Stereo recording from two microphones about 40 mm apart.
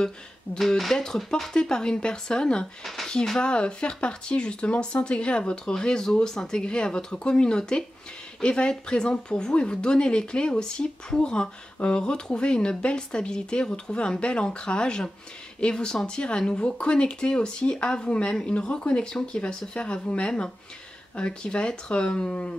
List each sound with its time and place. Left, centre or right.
0.6 s speech: centre; by 22.5 s left